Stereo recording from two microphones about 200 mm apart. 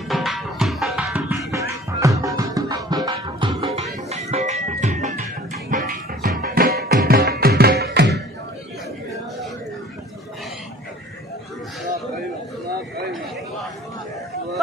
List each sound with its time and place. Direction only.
0.1 s music: centre (ahead or behind); by 3.8 s 25° right (ahead or behind)
3.8 s music: 35° right (ahead or behind); by 8.2 s 55° right (ahead or behind)